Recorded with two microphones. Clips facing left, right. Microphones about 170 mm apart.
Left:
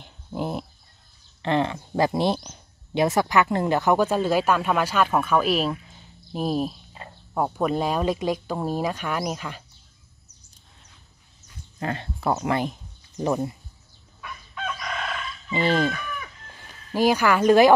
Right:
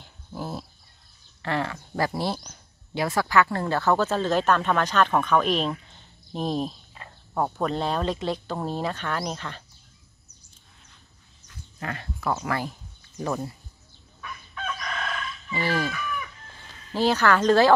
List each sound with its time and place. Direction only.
0.0 s dog: 20° left (ahead or behind)
1.4 s speech: 20° left (ahead or behind)
7.0 s cricket: 25° left (ahead or behind)
7.3 s speech: 10° left (ahead or behind)
11.8 s speech: 30° left (ahead or behind)
15.5 s speech: 20° left (ahead or behind)
16.6 s speech: 10° left (ahead or behind)